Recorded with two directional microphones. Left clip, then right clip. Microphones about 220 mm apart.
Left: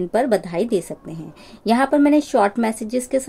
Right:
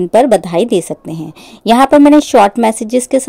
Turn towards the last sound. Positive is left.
turn(degrees=-35)  # may be behind; listen again after turning